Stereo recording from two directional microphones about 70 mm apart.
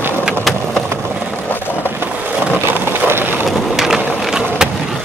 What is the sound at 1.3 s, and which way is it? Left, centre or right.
Vehicle, left.